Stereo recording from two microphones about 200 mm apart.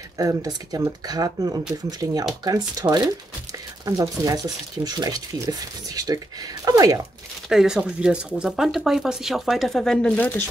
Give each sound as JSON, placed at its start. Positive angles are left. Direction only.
{"t": 0.2, "sound": "speech", "side_deg": -15}
{"t": 7.4, "sound": "speech", "side_deg": 0}